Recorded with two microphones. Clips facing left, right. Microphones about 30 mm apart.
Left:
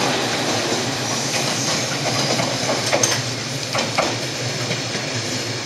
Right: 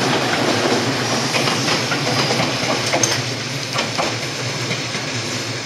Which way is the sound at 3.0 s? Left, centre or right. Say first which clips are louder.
Right 1 dB; centre.